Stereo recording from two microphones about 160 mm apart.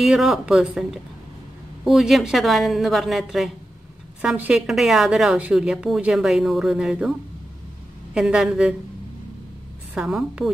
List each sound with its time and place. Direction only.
0.0 s a woman's voice: centre (ahead or behind)
9.9 s a woman's voice: 5° right (ahead or behind)